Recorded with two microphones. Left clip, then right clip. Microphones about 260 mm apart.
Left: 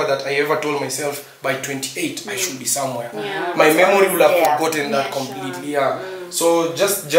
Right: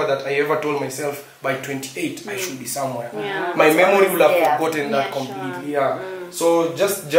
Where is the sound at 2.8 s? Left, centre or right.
Right.